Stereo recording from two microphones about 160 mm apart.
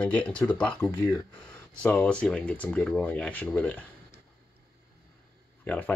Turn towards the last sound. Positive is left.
turn(degrees=10)  # may be behind; listen again after turning